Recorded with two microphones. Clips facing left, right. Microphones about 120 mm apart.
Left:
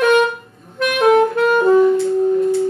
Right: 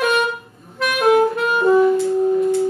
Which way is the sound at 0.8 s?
50° left (ahead or behind).